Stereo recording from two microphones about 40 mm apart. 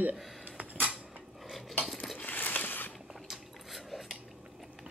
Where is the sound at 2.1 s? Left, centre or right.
Left.